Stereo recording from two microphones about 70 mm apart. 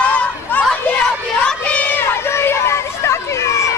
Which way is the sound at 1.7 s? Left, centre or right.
Left.